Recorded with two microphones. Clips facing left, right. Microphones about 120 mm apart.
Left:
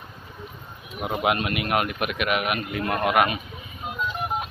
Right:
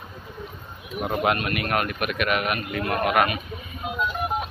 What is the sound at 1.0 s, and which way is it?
A man's voice, 10° left (ahead or behind).